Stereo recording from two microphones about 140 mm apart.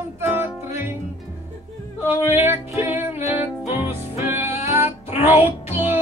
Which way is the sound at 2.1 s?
15° right (ahead or behind).